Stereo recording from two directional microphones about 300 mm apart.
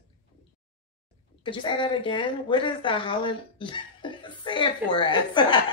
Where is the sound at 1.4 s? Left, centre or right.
Centre.